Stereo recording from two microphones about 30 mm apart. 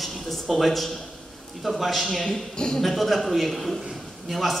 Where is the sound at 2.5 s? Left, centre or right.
Left.